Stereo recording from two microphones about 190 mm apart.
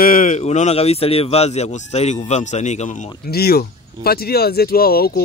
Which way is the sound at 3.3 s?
55° left (ahead or behind).